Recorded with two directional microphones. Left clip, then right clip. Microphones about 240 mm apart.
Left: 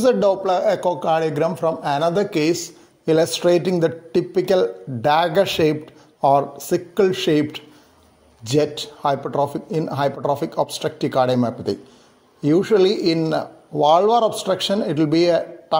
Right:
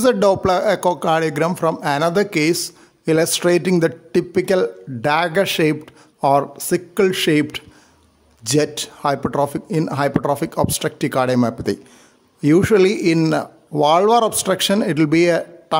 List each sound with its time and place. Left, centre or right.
0.0 s a man's voice: right